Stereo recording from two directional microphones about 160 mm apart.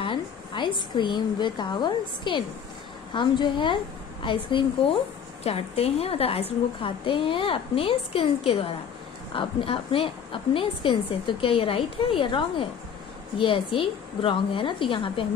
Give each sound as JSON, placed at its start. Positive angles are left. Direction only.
{"t": 0.0, "sound": "a woman's voice", "side_deg": 30}